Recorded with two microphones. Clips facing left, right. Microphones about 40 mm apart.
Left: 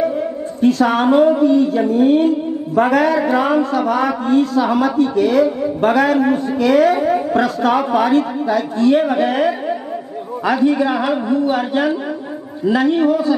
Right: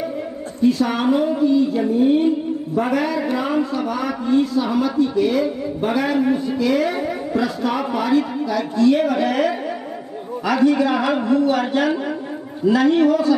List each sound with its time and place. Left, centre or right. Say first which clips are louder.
0.6 s speech: left 4 dB; left
2.8 s a man's voice: left 7 dB; left
10.4 s a man's voice: left 1 dB; left